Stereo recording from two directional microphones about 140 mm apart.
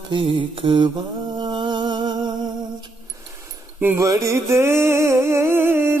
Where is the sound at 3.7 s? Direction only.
15° right (ahead or behind).